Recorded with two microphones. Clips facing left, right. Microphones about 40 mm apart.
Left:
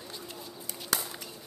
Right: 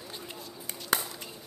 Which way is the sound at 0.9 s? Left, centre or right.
Right.